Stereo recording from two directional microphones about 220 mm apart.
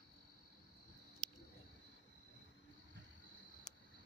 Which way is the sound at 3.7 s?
30° left (ahead or behind).